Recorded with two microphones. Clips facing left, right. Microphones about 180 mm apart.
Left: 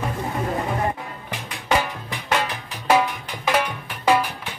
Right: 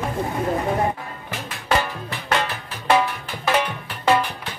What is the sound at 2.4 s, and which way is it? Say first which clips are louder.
Music: even; 15° left (ahead or behind).